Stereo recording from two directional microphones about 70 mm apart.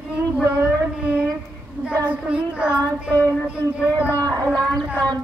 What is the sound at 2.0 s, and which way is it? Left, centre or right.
Child singing, centre.